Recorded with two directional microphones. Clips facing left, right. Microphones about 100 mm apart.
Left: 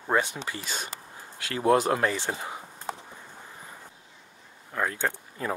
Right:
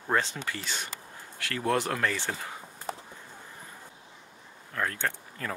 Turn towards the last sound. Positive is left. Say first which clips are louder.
# left 3 dB
turn(degrees=20)  # may be behind; listen again after turning